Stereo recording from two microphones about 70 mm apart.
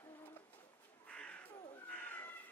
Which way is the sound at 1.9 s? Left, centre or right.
Left.